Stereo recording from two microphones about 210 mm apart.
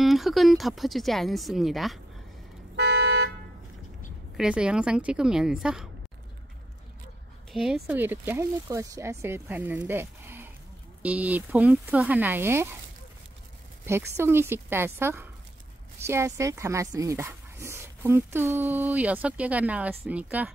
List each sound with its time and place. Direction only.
0.0 s speech: centre (ahead or behind)
2.7 s car alarm: 55° right (ahead or behind)
4.4 s speech: 5° right (ahead or behind)
7.5 s speech: centre (ahead or behind)
13.8 s speech: 10° right (ahead or behind)